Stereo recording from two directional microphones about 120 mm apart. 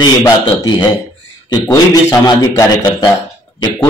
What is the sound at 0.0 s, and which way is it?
Speech, 40° left (ahead or behind).